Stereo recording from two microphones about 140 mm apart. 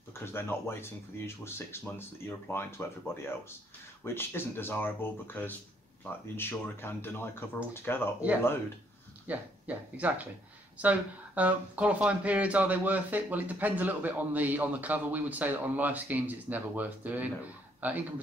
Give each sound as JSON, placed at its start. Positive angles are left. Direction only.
{"t": 0.2, "sound": "speech", "side_deg": 15}
{"t": 4.0, "sound": "speech", "side_deg": 15}
{"t": 9.3, "sound": "speech", "side_deg": -10}